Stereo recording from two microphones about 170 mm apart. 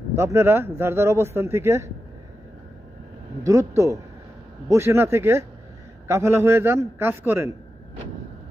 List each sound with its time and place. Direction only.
0.1 s speech: 15° right (ahead or behind)
3.4 s speech: 20° right (ahead or behind)